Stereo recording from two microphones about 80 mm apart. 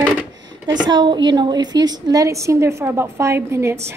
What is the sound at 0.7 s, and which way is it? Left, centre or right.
A woman's voice, right.